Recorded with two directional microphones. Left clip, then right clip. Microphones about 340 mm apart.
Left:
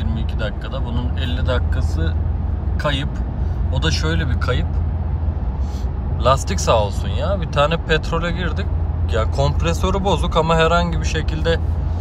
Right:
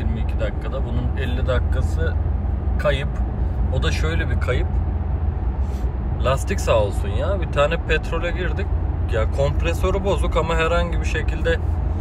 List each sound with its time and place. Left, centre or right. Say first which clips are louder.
0.1 s speech: left 1 dB; centre
6.2 s speech: left 5 dB; centre